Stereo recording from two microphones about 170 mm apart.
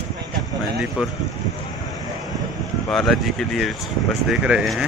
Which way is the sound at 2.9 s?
Centre (ahead or behind).